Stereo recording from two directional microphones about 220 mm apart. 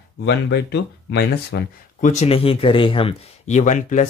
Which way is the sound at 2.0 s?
30° left (ahead or behind).